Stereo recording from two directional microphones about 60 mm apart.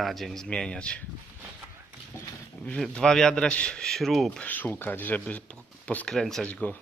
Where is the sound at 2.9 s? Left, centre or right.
Centre.